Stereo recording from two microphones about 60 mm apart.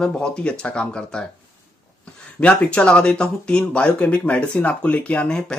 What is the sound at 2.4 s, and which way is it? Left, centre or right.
Speech, centre.